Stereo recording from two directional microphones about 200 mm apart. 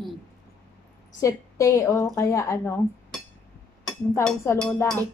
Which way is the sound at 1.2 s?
15° left (ahead or behind).